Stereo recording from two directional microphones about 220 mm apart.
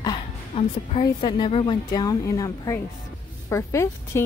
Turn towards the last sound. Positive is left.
turn(degrees=15)  # may be behind; listen again after turning